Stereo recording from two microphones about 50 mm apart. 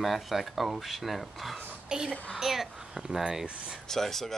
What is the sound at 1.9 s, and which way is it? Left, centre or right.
Speech, centre.